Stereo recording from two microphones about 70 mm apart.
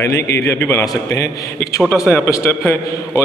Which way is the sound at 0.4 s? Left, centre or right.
Left.